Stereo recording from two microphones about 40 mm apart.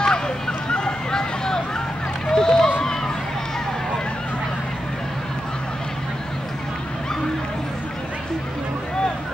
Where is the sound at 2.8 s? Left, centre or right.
Centre.